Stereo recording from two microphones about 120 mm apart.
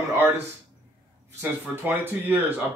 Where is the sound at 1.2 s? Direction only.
20° right (ahead or behind).